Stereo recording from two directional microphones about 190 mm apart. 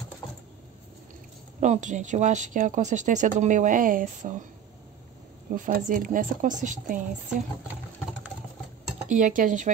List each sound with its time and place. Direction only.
1.6 s speech: 40° right (ahead or behind)
5.5 s speech: 45° right (ahead or behind)
9.1 s speech: 45° right (ahead or behind)